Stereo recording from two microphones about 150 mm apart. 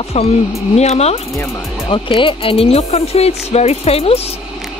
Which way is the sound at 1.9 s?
35° left (ahead or behind).